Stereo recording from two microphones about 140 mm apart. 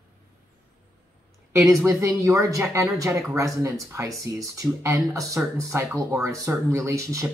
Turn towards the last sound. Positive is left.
turn(degrees=-20)  # may be behind; listen again after turning